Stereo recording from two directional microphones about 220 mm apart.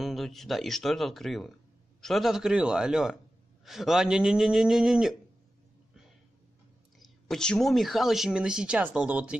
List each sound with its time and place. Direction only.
0.0 s speech: centre (ahead or behind)
7.0 s speech: centre (ahead or behind)